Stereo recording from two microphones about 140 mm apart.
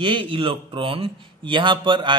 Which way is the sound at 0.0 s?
40° right (ahead or behind).